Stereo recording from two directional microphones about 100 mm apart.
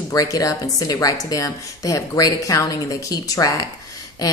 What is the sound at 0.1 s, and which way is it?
Speech, 40° left (ahead or behind).